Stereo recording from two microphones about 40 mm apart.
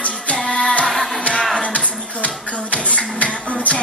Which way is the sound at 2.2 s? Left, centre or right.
Left.